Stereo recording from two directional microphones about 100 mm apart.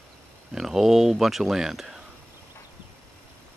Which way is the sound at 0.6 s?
Centre (ahead or behind).